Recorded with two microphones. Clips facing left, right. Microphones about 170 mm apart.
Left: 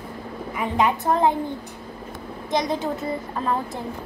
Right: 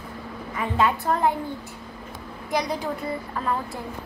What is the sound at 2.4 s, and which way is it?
Speech, 20° left (ahead or behind).